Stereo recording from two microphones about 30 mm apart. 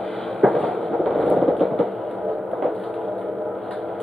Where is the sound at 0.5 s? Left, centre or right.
Left.